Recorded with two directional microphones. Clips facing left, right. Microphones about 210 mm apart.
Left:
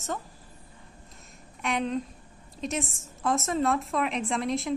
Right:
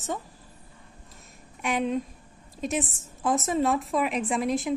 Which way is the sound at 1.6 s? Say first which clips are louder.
Right 2 dB; 5° right (ahead or behind).